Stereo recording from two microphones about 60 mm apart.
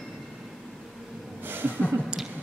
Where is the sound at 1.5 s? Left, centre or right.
Right.